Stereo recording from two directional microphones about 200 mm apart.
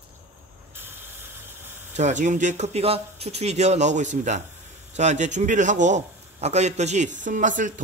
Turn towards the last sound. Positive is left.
turn(degrees=-40)  # may be behind; listen again after turning